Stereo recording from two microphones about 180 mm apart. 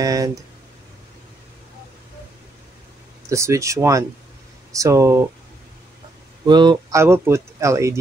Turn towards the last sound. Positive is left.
turn(degrees=-15)  # may be behind; listen again after turning